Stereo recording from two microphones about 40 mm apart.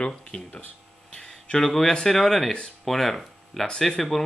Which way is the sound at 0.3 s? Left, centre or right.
Left.